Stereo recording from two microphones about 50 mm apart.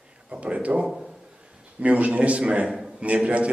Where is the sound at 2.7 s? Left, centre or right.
Centre.